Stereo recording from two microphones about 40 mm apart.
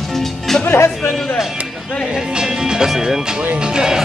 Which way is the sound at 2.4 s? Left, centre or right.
Centre.